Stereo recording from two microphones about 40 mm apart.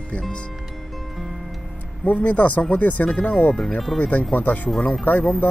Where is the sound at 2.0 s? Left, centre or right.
Left.